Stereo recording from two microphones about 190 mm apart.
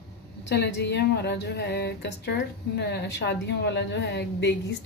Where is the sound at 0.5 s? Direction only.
65° left (ahead or behind).